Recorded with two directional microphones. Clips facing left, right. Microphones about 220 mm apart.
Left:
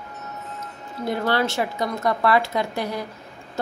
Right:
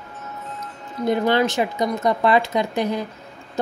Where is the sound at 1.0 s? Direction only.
20° right (ahead or behind).